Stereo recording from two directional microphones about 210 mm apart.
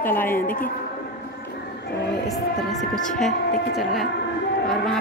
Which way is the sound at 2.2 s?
Centre (ahead or behind).